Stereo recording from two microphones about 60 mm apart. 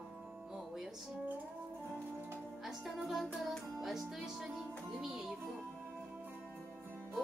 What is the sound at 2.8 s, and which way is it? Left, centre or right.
Speech, centre.